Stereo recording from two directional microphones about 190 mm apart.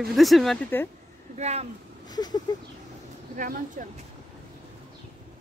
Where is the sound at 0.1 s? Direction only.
Centre (ahead or behind).